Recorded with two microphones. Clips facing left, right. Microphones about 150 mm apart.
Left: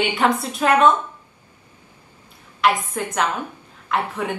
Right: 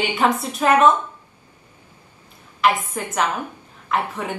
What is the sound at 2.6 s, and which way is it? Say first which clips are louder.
A woman's voice: even; centre (ahead or behind).